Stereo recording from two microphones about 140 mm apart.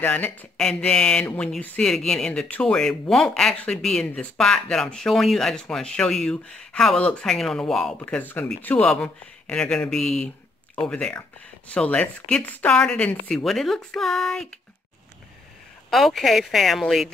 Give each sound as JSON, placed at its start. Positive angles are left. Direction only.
{"t": 0.0, "sound": "speech", "side_deg": 10}
{"t": 15.9, "sound": "speech", "side_deg": 0}